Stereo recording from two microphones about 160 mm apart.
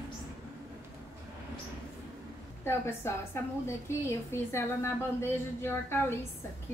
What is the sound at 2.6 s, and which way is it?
A woman's voice, 15° left (ahead or behind).